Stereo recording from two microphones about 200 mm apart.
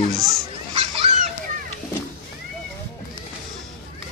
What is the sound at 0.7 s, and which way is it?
Fowl, 30° right (ahead or behind).